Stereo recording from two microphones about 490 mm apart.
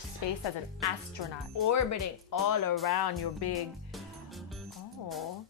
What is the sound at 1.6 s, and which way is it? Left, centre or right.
Speech, left.